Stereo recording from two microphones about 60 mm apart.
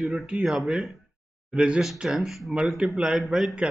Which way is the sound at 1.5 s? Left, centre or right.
Centre.